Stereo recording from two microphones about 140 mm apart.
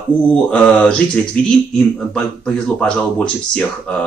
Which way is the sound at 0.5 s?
5° left (ahead or behind).